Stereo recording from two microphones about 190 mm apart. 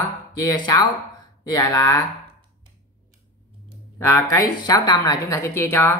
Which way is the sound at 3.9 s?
15° left (ahead or behind).